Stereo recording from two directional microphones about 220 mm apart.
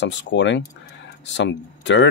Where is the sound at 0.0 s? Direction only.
55° left (ahead or behind).